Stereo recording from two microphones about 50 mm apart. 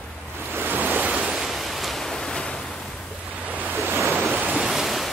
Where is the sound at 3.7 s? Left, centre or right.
Right.